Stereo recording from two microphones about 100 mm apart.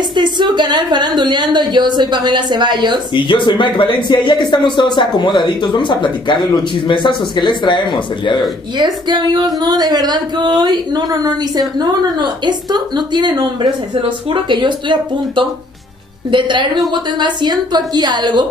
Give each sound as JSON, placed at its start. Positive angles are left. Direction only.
{"t": 0.1, "sound": "speech", "side_deg": -50}
{"t": 3.2, "sound": "speech", "side_deg": 55}
{"t": 8.7, "sound": "speech", "side_deg": -45}